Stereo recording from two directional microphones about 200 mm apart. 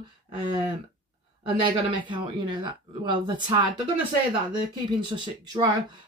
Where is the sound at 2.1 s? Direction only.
25° right (ahead or behind).